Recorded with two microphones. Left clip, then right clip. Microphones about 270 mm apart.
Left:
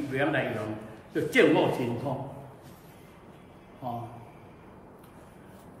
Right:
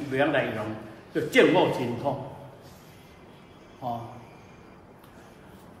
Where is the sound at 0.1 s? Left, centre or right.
Centre.